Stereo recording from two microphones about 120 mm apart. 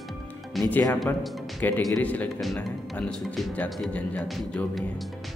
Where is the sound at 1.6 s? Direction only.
15° left (ahead or behind).